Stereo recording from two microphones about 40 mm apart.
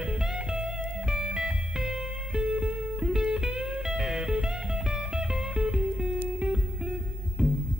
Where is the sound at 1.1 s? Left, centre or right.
Centre.